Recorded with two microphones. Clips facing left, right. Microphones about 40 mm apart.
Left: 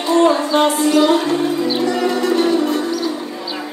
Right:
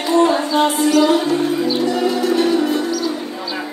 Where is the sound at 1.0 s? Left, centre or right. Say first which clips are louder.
Even; left.